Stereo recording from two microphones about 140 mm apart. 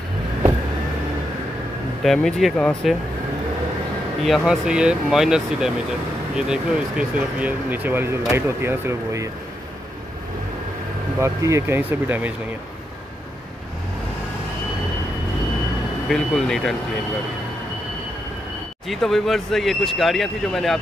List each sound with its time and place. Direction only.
2.2 s speech: 5° left (ahead or behind)
4.2 s speech: centre (ahead or behind); by 9.3 s 20° right (ahead or behind)
11.1 s speech: 20° right (ahead or behind)
16.1 s speech: 5° left (ahead or behind)
18.9 s speech: centre (ahead or behind)